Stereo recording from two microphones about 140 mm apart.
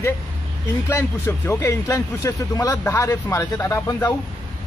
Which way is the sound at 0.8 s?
20° left (ahead or behind).